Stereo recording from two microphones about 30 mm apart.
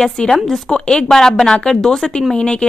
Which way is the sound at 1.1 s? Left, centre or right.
Centre.